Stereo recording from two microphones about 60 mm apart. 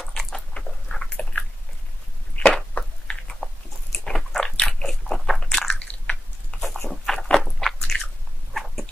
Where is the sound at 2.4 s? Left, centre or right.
Centre.